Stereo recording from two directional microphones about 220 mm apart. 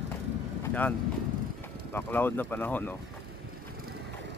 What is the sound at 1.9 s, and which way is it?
Speech, 10° left (ahead or behind).